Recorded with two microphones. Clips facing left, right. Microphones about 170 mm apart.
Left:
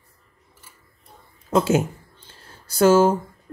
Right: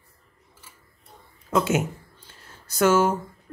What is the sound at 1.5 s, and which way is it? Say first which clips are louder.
Speech: left 4 dB; 30° left (ahead or behind).